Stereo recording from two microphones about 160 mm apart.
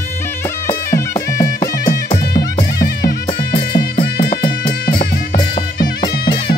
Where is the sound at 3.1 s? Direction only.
30° left (ahead or behind).